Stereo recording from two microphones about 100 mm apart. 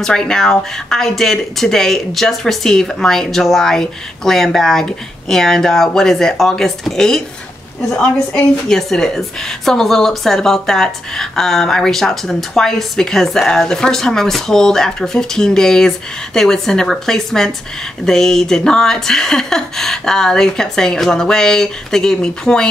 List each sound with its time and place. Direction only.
0.0 s speech: 5° left (ahead or behind)